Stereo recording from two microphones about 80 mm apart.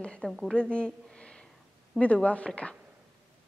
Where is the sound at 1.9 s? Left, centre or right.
Centre.